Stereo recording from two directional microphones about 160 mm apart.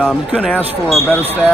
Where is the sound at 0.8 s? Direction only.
5° left (ahead or behind).